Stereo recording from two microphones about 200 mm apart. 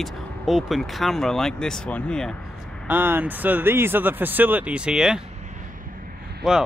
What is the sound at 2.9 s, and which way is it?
Speech, 10° right (ahead or behind).